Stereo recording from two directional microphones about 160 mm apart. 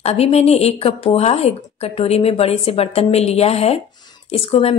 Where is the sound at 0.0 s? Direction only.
40° left (ahead or behind).